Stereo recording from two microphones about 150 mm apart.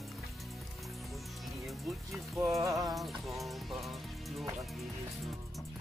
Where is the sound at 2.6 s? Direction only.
20° right (ahead or behind).